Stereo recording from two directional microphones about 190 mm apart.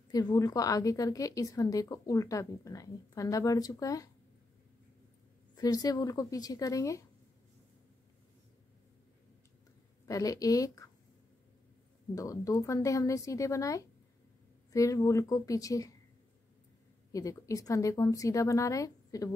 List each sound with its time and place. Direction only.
0.1 s a woman's voice: 20° left (ahead or behind)
5.6 s a woman's voice: 20° left (ahead or behind)
10.0 s a woman's voice: 20° left (ahead or behind)
12.2 s a woman's voice: 20° left (ahead or behind)
17.1 s a woman's voice: 20° left (ahead or behind)